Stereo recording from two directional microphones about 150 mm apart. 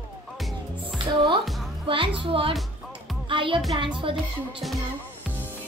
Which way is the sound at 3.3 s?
35° right (ahead or behind).